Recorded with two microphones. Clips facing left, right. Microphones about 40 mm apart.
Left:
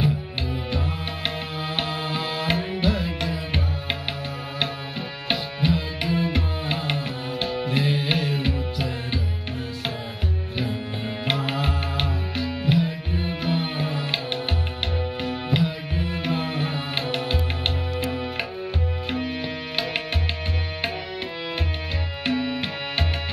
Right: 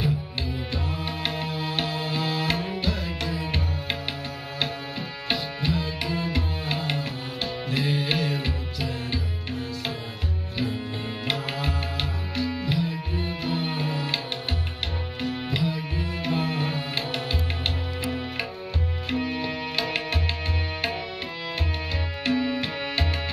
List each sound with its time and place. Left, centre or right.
1.8 s tabla: centre
5.3 s music: centre
11.4 s tabla: centre
13.5 s music: centre
15.2 s tabla: centre
16.9 s music: left
19.0 s music: centre
22.2 s tabla: centre